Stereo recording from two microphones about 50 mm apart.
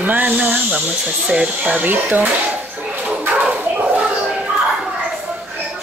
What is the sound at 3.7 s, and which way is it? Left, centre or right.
Slap, right.